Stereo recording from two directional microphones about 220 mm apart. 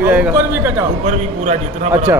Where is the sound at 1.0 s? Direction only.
30° right (ahead or behind).